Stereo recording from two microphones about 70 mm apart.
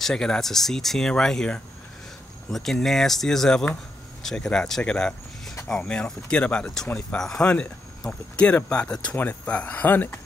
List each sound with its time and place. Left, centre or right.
0.0 s speech: centre
9.1 s speech: left